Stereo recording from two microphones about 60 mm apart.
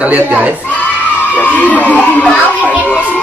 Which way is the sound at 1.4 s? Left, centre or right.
Left.